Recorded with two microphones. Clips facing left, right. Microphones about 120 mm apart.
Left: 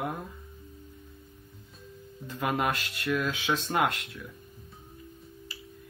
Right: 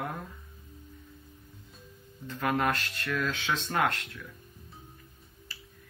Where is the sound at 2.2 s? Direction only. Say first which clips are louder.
Even; 15° left (ahead or behind).